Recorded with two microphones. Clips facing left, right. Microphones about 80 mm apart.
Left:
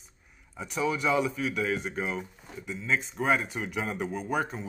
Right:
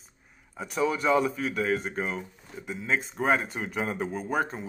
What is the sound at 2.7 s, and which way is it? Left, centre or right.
Speech, right.